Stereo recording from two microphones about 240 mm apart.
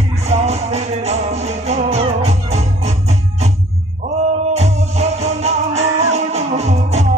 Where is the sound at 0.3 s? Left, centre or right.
Right.